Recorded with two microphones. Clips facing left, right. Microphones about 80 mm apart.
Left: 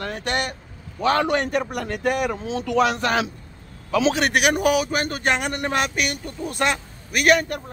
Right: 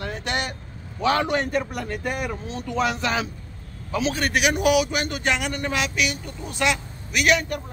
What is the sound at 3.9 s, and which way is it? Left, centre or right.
Speech, left.